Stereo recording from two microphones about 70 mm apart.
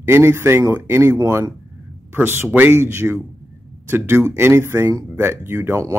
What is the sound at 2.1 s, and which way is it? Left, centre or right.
Speech, right.